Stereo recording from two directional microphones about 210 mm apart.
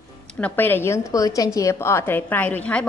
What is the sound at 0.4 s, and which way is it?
A woman's voice, 10° left (ahead or behind).